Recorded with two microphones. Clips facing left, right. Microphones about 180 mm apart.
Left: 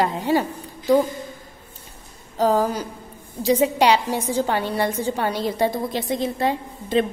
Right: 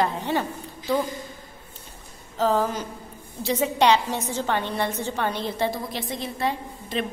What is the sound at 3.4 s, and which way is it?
A woman's voice, 10° left (ahead or behind).